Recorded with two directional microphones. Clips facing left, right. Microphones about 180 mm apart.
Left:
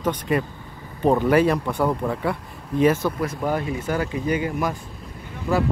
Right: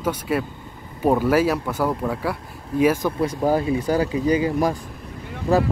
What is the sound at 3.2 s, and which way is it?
Speech, 35° right (ahead or behind).